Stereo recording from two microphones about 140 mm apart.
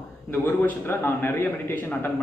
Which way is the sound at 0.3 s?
15° left (ahead or behind).